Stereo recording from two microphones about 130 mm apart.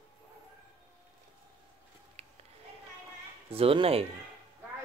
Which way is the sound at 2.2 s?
50° right (ahead or behind).